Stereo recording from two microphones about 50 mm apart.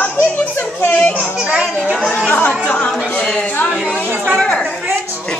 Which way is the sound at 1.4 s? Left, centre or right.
Right.